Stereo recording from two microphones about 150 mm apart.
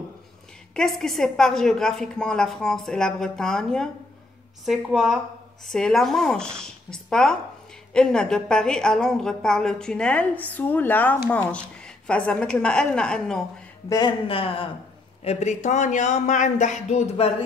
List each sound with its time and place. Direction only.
0.7 s a woman's voice: centre (ahead or behind)
13.8 s speech: 30° left (ahead or behind)
15.2 s speech: 50° left (ahead or behind)